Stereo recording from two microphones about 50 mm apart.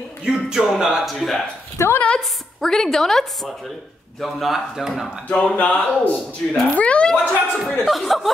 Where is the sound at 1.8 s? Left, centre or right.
Left.